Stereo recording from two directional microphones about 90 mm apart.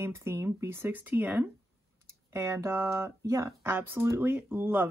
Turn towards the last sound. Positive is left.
turn(degrees=-20)  # may be behind; listen again after turning